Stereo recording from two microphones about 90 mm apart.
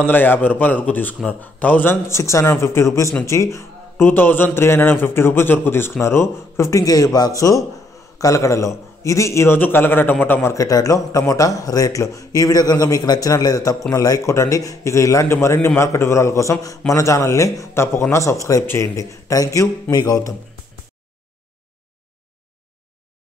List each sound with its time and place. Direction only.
0.0 s a man's voice: 20° left (ahead or behind)
2.0 s a man's voice: 35° left (ahead or behind)
4.1 s a man's voice: 20° left (ahead or behind); by 20.3 s 45° left (ahead or behind)